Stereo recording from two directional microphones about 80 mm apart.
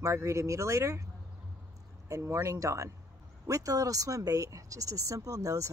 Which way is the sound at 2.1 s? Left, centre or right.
Right.